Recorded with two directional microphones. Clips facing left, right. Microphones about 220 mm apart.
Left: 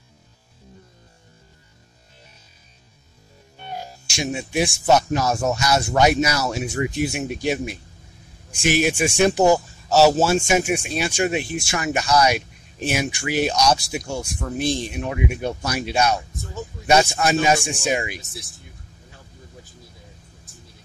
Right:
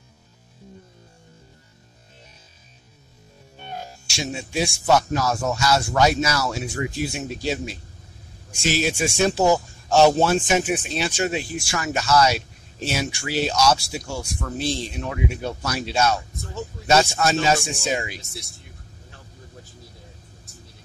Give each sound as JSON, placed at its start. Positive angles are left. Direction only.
{"t": 3.7, "sound": "speech", "side_deg": 15}
{"t": 9.8, "sound": "speech", "side_deg": 5}
{"t": 18.2, "sound": "speech", "side_deg": 0}